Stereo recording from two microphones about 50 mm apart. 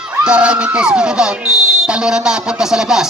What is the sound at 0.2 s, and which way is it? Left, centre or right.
A man's voice, right.